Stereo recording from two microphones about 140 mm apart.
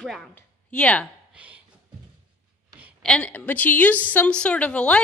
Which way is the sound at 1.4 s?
10° right (ahead or behind).